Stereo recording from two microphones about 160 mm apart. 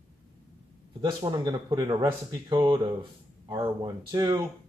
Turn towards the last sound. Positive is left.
turn(degrees=-25)  # may be behind; listen again after turning